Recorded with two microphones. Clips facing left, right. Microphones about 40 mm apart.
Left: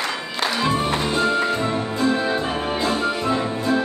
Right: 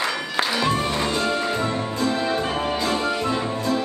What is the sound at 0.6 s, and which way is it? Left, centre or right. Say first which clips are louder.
Music: left 3 dB; left.